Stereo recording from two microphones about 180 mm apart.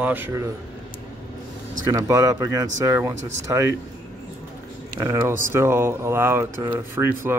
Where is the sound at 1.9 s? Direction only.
20° right (ahead or behind).